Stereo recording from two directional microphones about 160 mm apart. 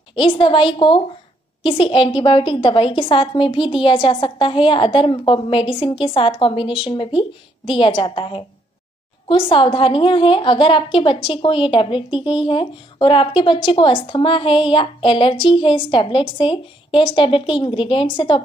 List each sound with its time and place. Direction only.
0.1 s speech: 30° left (ahead or behind)